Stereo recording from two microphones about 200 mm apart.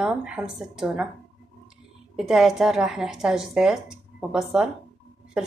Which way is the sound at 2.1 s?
Centre (ahead or behind).